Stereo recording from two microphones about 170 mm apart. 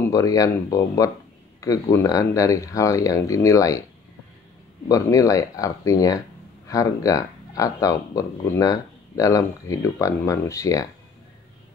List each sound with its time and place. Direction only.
0.0 s speech: 20° left (ahead or behind)
4.8 s speech: 20° left (ahead or behind)